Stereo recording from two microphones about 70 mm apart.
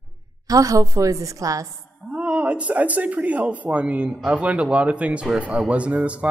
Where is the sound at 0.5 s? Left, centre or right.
Right.